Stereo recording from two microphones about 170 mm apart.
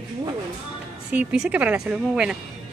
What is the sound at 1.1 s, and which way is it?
Speech, 10° right (ahead or behind).